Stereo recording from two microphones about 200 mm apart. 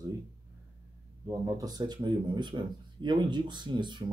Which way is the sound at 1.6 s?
20° right (ahead or behind).